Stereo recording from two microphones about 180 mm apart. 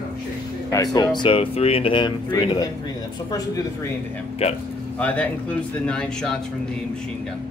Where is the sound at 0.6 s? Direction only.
20° left (ahead or behind).